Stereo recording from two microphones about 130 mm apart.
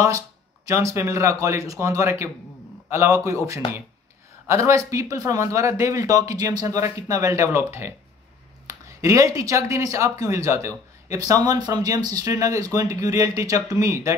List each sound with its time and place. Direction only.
0.7 s speech: 25° right (ahead or behind)
8.6 s a sound: 25° right (ahead or behind)
9.4 s speech: 25° right (ahead or behind)